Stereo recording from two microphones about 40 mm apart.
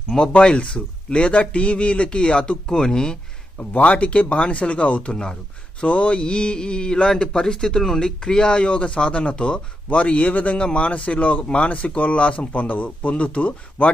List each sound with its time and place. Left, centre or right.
0.2 s speech: left
3.5 s a man's voice: left